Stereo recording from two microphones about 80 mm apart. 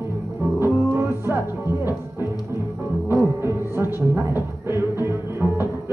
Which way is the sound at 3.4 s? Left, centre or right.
Right.